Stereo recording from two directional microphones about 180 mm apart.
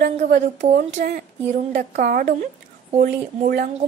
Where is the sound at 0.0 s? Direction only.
40° right (ahead or behind).